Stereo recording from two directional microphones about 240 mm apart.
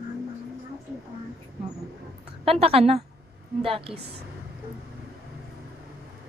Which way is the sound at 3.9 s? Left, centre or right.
Right.